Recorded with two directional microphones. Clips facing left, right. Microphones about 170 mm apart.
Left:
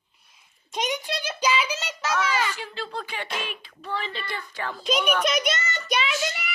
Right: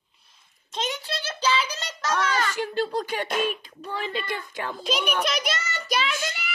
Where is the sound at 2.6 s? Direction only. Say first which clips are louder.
Right 7 dB; 45° right (ahead or behind).